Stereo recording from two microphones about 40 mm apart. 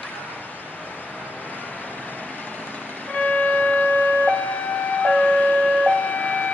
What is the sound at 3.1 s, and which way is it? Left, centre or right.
Music, left.